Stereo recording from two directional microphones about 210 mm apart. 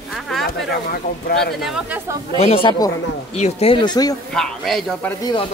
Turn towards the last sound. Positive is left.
turn(degrees=25)  # may be behind; listen again after turning